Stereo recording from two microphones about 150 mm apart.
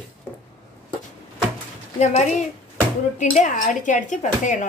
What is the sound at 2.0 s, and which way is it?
Speech, 50° left (ahead or behind).